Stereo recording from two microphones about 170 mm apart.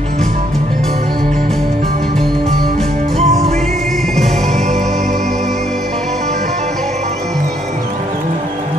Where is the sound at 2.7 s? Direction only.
35° right (ahead or behind).